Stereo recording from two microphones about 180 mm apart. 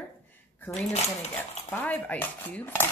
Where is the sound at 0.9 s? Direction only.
40° left (ahead or behind).